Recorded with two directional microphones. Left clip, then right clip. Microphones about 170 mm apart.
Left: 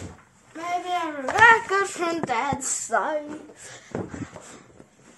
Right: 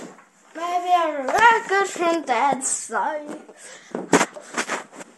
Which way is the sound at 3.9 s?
30° right (ahead or behind).